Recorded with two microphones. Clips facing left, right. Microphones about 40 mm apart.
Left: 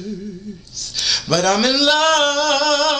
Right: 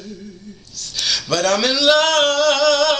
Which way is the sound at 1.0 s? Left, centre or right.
Right.